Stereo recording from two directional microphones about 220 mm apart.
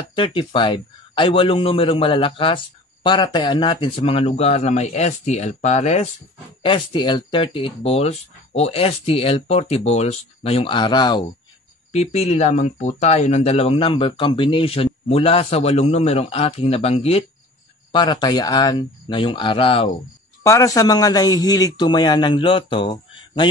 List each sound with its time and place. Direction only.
0.1 s speech: 25° left (ahead or behind)
20.4 s speech: 15° left (ahead or behind)